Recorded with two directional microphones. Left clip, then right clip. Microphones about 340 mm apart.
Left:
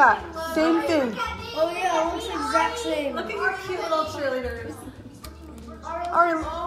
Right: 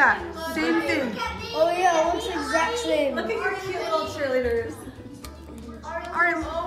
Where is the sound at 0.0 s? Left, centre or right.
Centre.